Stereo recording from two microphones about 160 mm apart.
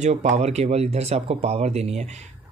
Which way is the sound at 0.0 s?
45° right (ahead or behind).